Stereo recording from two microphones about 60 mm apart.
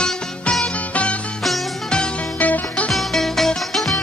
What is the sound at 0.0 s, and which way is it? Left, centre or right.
Music, centre.